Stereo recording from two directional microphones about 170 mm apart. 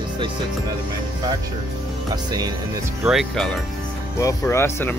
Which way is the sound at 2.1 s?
25° right (ahead or behind).